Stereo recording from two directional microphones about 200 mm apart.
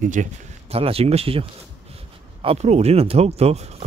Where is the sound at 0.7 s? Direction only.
30° right (ahead or behind).